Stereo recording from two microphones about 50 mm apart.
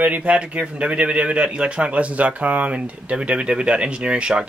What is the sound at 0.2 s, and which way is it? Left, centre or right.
Speech, right.